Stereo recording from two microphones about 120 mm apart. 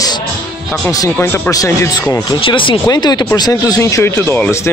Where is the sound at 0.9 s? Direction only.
25° left (ahead or behind).